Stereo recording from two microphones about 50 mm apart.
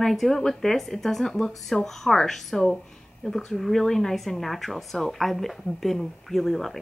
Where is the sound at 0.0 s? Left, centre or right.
Centre.